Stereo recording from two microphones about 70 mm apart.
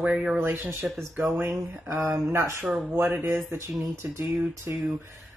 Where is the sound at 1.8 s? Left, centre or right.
Right.